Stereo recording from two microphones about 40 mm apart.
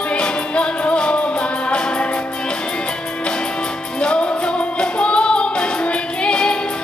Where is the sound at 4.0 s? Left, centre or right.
Left.